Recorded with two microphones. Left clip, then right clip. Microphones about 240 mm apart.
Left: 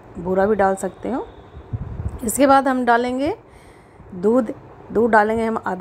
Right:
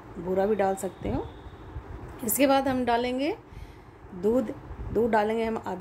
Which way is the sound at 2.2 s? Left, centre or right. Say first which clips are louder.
Left 9 dB; centre.